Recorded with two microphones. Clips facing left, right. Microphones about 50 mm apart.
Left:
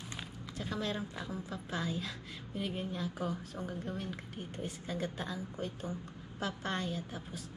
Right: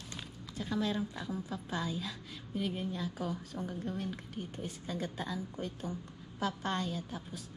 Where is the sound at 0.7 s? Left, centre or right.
Centre.